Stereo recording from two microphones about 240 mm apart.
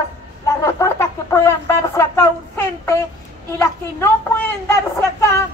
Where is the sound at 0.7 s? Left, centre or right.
Centre.